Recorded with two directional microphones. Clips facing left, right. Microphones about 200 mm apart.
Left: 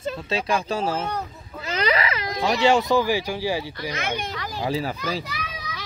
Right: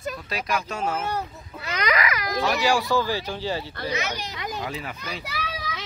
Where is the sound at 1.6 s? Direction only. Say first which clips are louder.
Left 2 dB; 30° left (ahead or behind); by 3.7 s 10° left (ahead or behind).